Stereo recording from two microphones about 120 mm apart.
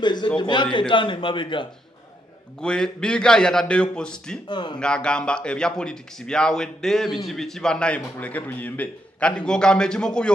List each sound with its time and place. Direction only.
0.0 s a sound: 40° left (ahead or behind)
0.4 s a man's voice: 40° left (ahead or behind)
2.6 s a man's voice: 5° left (ahead or behind)
4.5 s a man's voice: 40° left (ahead or behind)
4.7 s a man's voice: 5° left (ahead or behind)